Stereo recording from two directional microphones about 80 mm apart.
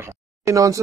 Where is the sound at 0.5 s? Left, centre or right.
Right.